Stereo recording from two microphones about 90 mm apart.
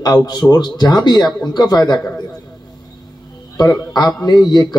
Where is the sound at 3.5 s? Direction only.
45° left (ahead or behind).